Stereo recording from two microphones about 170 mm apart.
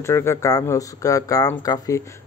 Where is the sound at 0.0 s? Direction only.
15° left (ahead or behind).